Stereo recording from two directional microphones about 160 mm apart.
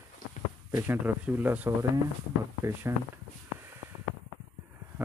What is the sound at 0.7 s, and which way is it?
Speech, 15° right (ahead or behind).